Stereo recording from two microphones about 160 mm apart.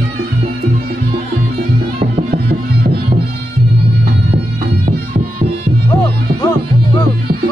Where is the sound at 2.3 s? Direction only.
80° right.